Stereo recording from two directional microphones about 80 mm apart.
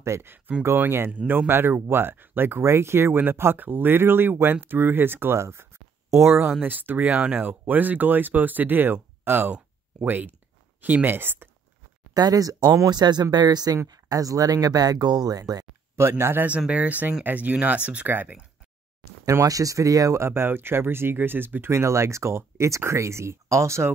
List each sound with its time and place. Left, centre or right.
0.0 s speech: right
6.6 s speech: right
12.1 s speech: right
12.9 s speech: right
16.0 s speech: right
16.4 s speech: centre
19.2 s speech: right